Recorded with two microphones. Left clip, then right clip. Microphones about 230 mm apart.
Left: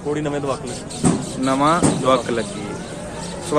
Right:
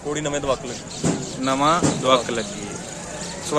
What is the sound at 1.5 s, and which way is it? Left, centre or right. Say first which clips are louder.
Speech: left 2 dB; centre.